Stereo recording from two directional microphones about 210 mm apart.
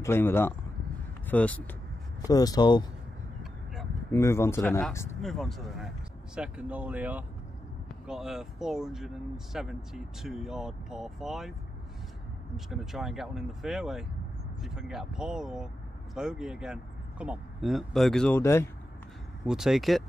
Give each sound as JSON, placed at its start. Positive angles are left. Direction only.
{"t": 0.0, "sound": "speech", "side_deg": 10}
{"t": 2.2, "sound": "speech", "side_deg": 20}
{"t": 4.1, "sound": "speech", "side_deg": 10}
{"t": 5.2, "sound": "speech", "side_deg": 0}
{"t": 12.5, "sound": "speech", "side_deg": 0}
{"t": 19.4, "sound": "speech", "side_deg": 0}